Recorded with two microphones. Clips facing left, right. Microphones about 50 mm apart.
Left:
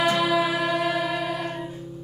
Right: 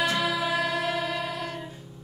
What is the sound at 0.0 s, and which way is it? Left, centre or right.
Music, centre.